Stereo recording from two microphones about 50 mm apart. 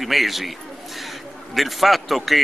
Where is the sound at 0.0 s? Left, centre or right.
Centre.